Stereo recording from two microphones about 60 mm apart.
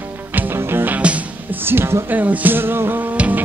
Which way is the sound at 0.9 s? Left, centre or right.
Right.